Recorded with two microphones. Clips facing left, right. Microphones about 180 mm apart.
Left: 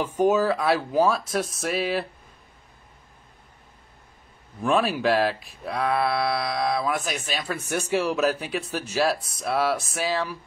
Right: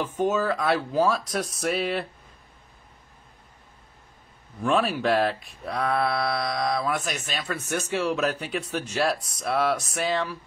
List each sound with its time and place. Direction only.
0.0 s speech: 10° left (ahead or behind)
4.6 s speech: 10° left (ahead or behind)